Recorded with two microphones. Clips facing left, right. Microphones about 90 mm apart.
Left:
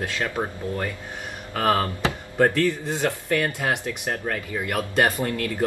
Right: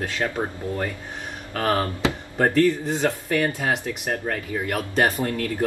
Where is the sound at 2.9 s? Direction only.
5° right (ahead or behind).